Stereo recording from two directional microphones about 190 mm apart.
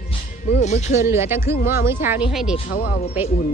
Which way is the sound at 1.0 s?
15° right (ahead or behind).